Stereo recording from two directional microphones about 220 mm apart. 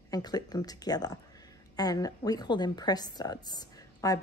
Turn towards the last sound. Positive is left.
turn(degrees=15)  # may be behind; listen again after turning